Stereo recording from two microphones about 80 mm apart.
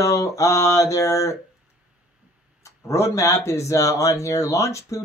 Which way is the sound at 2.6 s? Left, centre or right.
Left.